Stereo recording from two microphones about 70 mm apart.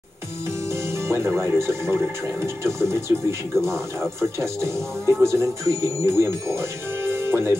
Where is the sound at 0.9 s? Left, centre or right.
Right.